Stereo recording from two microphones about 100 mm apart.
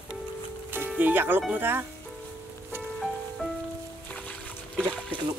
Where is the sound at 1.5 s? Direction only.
20° right (ahead or behind).